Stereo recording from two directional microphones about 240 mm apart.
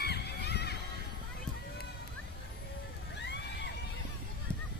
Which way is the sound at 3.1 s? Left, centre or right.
Left.